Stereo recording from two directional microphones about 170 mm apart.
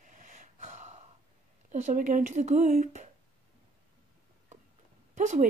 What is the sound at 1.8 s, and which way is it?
A woman's voice, 45° right (ahead or behind).